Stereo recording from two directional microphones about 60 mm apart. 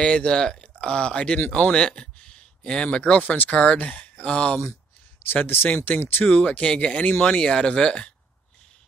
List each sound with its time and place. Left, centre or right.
0.0 s speech: centre
5.3 s speech: left
6.2 s speech: left